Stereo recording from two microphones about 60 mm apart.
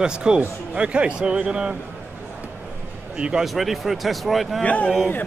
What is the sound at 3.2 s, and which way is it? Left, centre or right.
Speech, centre.